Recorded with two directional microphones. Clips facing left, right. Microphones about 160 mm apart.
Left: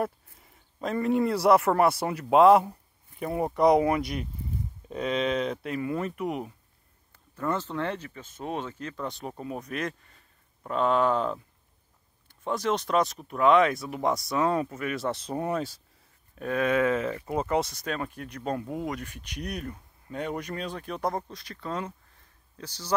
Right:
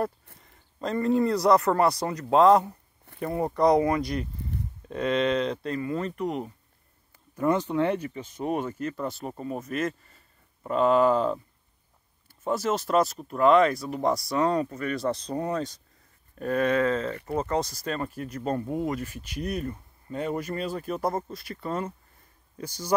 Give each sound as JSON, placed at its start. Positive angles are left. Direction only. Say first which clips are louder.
{"t": 0.4, "sound": "speech", "louder": "right 1 dB", "side_deg": 5}
{"t": 7.3, "sound": "speech", "louder": "right 6 dB", "side_deg": -15}
{"t": 15.3, "sound": "speech", "louder": "left 3 dB", "side_deg": 15}
{"t": 16.3, "sound": "speech", "louder": "right 1 dB", "side_deg": 0}
{"t": 17.6, "sound": "speech", "louder": "even", "side_deg": 0}